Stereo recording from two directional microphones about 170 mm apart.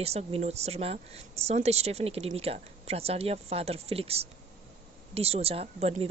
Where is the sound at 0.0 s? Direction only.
40° right (ahead or behind).